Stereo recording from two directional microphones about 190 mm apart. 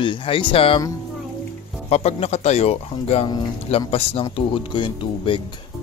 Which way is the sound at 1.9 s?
35° left (ahead or behind).